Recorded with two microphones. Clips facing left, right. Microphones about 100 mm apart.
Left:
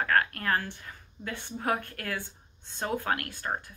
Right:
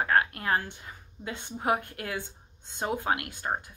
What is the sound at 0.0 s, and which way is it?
A woman's voice, 20° right (ahead or behind).